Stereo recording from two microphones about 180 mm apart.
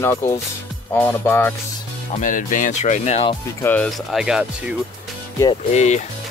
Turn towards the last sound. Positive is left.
turn(degrees=40)  # may be behind; listen again after turning